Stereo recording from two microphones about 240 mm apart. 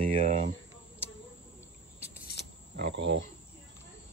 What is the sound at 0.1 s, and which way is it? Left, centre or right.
Speech, right.